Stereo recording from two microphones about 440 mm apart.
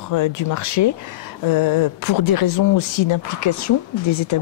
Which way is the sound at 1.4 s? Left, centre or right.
Left.